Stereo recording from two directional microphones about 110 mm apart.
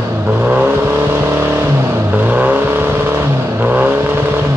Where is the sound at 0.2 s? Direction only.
15° right (ahead or behind).